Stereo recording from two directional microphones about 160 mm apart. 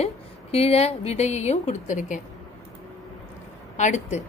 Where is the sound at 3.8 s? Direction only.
50° left (ahead or behind).